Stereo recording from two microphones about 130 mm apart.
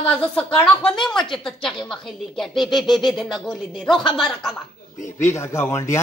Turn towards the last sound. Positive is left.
turn(degrees=20)  # may be behind; listen again after turning